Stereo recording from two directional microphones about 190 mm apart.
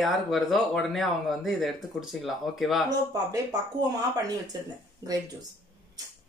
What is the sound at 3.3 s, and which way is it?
Speech, 20° right (ahead or behind).